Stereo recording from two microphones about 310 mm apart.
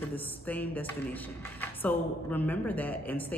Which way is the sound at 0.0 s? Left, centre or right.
Centre.